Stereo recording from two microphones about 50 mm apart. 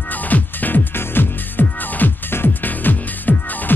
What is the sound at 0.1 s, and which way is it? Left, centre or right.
Music, left.